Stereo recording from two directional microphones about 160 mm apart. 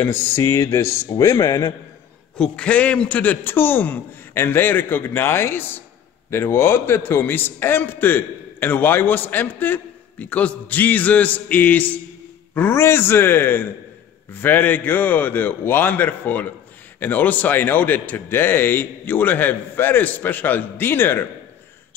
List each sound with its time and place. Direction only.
0.0 s speech: 15° left (ahead or behind)
2.3 s a man's voice: 5° left (ahead or behind)